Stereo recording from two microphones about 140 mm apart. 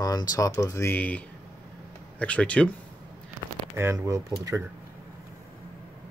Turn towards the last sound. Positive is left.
turn(degrees=-20)  # may be behind; listen again after turning